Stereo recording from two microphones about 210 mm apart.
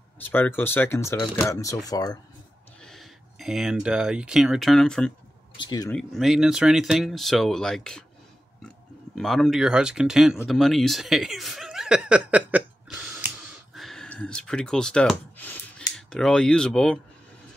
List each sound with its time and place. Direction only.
0.2 s speech: 10° left (ahead or behind)
2.8 s speech: centre (ahead or behind)
5.6 s speech: 20° left (ahead or behind)
5.9 s speech: centre (ahead or behind)
13.7 s gasp: centre (ahead or behind)
16.1 s speech: 5° left (ahead or behind)